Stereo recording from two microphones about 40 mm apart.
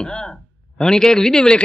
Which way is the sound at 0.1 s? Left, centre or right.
Centre.